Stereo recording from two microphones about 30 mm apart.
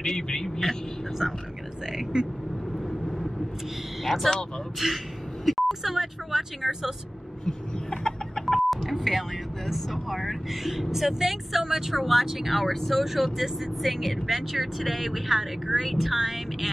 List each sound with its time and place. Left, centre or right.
0.0 s speech: centre
2.1 s speech: right
2.9 s vehicle: centre
4.0 s speech: centre
7.9 s chicken: left
8.5 s a sound: centre
9.7 s speech: centre
12.6 s speech: centre
13.0 s speech: centre